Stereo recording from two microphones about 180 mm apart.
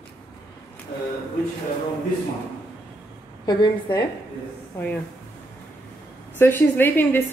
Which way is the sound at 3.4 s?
25° left (ahead or behind).